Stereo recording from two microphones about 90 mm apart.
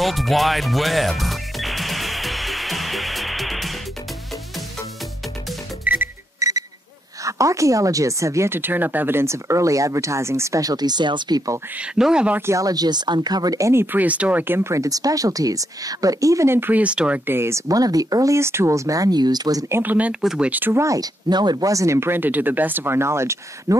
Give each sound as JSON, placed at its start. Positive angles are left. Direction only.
{"t": 0.0, "sound": "music", "side_deg": 0}
{"t": 5.9, "sound": "music", "side_deg": -15}
{"t": 6.4, "sound": "alarm clock", "side_deg": -35}
{"t": 7.2, "sound": "speech", "side_deg": -35}
{"t": 11.8, "sound": "speech", "side_deg": -10}
{"t": 12.4, "sound": "speech", "side_deg": -30}
{"t": 12.6, "sound": "speech", "side_deg": -45}
{"t": 13.9, "sound": "speech", "side_deg": -15}
{"t": 16.5, "sound": "speech", "side_deg": -20}
{"t": 17.3, "sound": "speech", "side_deg": -30}
{"t": 19.7, "sound": "speech", "side_deg": -20}
{"t": 20.7, "sound": "speech", "side_deg": -35}